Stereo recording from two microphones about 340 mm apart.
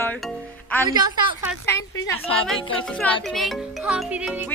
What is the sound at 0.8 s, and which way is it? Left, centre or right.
Speech, centre.